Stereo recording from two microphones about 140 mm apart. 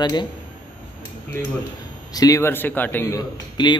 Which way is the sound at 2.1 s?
25° left (ahead or behind).